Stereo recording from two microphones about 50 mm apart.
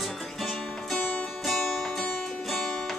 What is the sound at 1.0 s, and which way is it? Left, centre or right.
Music, left.